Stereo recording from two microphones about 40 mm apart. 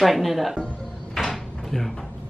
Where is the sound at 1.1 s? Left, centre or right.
Centre.